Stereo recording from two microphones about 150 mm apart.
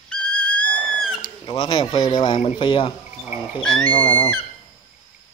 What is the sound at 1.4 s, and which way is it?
Speech, 30° left (ahead or behind).